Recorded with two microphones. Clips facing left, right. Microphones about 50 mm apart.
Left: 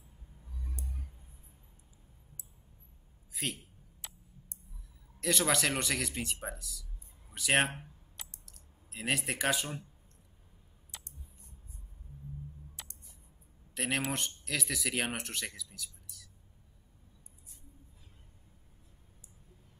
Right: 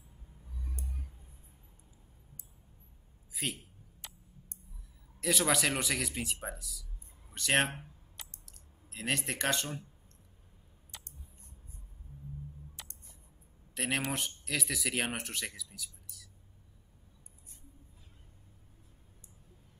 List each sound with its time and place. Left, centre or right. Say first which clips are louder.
0.7 s music: even; right
3.4 s speech: even; centre
4.0 s a sound: even; centre
5.2 s speech: even; centre
10.9 s a sound: even; centre
12.8 s music: left 1 dB; centre
13.7 s speech: even; centre